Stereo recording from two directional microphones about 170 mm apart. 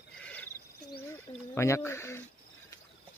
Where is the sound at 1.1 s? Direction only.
15° left (ahead or behind).